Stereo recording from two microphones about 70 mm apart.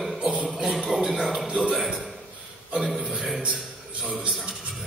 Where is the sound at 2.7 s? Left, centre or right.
Centre.